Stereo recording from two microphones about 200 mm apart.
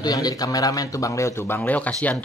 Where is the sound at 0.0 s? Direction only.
20° left (ahead or behind).